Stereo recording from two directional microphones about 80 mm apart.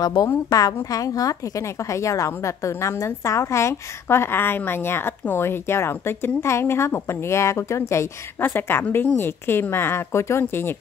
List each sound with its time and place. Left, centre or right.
0.0 s a woman's voice: left
8.4 s a woman's voice: left